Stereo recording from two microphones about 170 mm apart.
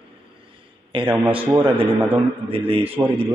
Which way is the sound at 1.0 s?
10° right (ahead or behind).